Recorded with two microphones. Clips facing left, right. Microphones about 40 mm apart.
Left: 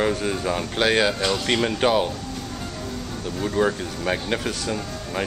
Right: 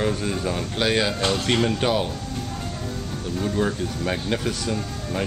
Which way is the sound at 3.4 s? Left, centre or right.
Centre.